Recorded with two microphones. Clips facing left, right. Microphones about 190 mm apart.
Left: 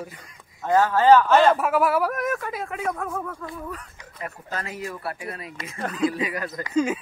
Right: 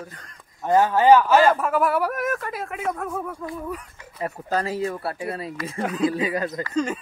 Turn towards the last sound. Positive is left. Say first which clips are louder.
# left 2 dB
turn(degrees=5)  # may be behind; listen again after turning